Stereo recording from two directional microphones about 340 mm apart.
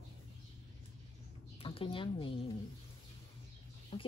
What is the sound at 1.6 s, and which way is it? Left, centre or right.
Speech, centre.